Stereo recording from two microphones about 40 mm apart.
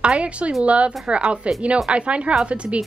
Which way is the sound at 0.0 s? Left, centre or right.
Right.